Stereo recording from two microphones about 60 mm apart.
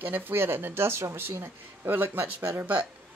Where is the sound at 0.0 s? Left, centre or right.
Right.